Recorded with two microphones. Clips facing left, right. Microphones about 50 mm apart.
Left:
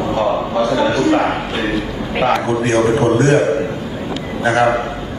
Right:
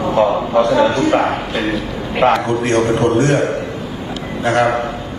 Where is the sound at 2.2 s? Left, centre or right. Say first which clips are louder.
Right 3 dB; right.